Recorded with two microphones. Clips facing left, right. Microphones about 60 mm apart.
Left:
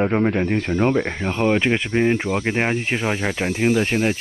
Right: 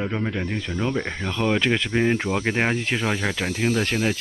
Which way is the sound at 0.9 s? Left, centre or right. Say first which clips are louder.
Left 5 dB; centre.